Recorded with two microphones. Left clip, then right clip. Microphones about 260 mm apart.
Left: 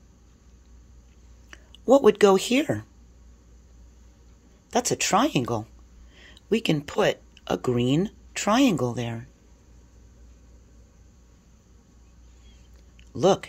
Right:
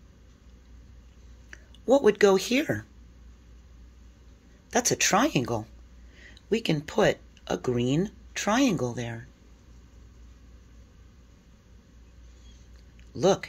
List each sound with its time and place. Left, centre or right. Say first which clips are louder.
1.5 s speech: left 4 dB; centre
4.6 s speech: even; centre
13.1 s speech: left 3 dB; centre